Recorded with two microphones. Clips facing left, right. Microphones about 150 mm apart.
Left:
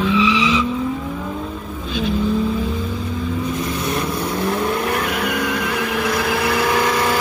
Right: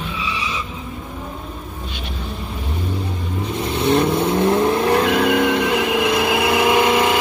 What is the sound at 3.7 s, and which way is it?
Vehicle, 25° right (ahead or behind).